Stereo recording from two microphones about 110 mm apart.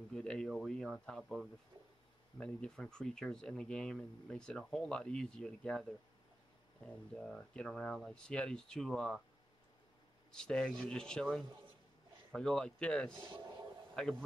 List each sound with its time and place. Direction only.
0.1 s speech: 5° left (ahead or behind)
10.3 s speech: 5° left (ahead or behind)
13.3 s speech: 40° right (ahead or behind)
14.0 s speech: 10° left (ahead or behind)